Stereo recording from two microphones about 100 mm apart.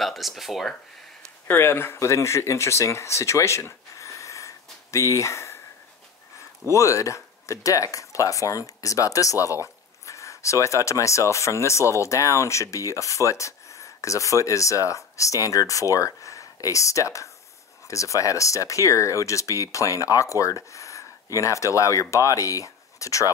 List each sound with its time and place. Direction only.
0.0 s speech: centre (ahead or behind)
1.5 s speech: 25° left (ahead or behind)
6.7 s speech: 30° left (ahead or behind)